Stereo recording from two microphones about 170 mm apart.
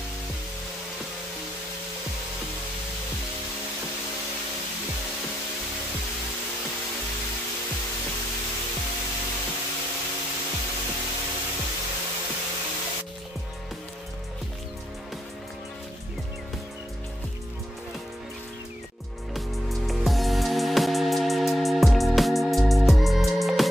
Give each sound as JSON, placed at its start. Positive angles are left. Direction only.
{"t": 19.3, "sound": "music", "side_deg": 0}